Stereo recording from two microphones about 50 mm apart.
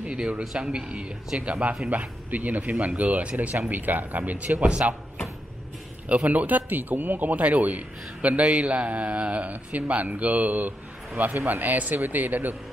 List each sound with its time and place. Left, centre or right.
0.0 s speech: right
0.4 s a man's voice: centre; by 4.5 s right
4.5 s speech: right
6.0 s speech: right